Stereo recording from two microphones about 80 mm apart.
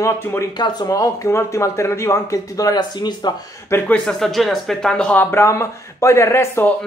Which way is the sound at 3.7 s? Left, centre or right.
Left.